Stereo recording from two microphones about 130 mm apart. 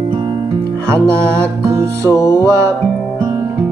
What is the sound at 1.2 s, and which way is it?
Music, 20° right (ahead or behind).